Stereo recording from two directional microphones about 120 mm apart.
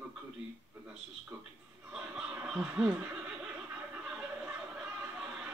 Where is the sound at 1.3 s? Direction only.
15° right (ahead or behind).